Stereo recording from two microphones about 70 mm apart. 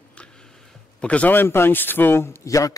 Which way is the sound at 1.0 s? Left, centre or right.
Centre.